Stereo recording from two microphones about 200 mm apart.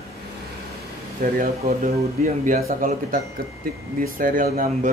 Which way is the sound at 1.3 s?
45° right (ahead or behind).